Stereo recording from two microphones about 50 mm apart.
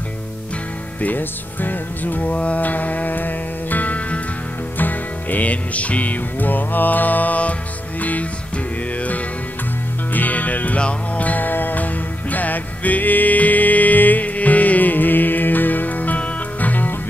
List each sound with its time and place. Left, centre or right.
1.0 s music: left
10.1 s music: left